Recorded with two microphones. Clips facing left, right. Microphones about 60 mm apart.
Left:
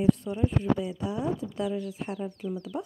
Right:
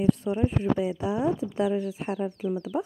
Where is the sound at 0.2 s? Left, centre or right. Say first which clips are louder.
Right 3 dB; right.